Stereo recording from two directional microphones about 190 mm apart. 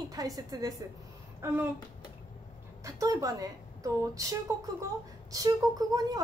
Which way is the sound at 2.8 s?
15° right (ahead or behind).